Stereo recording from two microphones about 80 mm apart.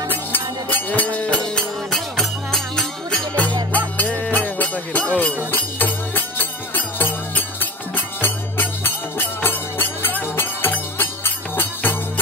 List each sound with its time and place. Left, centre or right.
0.1 s music: left
1.6 s music: centre; by 11.9 s left